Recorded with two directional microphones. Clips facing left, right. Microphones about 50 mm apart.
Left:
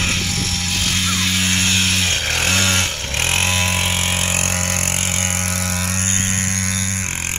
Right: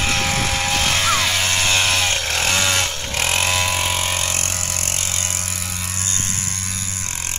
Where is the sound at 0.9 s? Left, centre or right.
Right.